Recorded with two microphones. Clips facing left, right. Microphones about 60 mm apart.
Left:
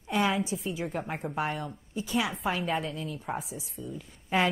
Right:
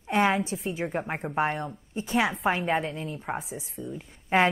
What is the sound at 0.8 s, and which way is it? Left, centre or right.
A woman's voice, right.